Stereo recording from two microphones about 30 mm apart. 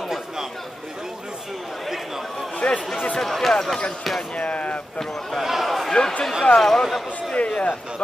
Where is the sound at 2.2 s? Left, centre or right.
Centre.